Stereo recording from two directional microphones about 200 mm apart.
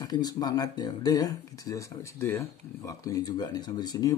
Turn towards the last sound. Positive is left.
turn(degrees=20)  # may be behind; listen again after turning